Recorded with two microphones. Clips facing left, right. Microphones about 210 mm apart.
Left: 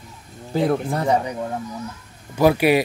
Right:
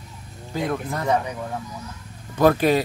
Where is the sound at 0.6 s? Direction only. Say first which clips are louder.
Left 5 dB; 30° left (ahead or behind).